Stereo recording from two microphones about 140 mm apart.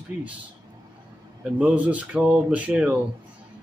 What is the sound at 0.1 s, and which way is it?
Speech, 60° left (ahead or behind).